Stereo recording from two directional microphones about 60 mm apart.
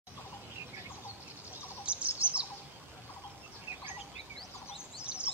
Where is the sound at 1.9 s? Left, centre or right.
Centre.